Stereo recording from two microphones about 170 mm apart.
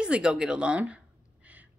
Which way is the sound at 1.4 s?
10° right (ahead or behind).